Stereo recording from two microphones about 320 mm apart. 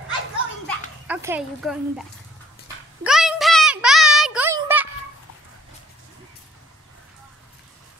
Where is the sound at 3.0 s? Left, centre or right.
Centre.